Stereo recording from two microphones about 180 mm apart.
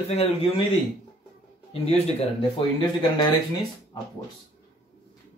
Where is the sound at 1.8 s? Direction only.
35° left (ahead or behind).